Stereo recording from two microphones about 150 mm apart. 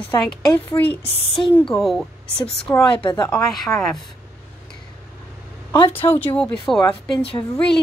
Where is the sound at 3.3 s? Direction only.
5° left (ahead or behind).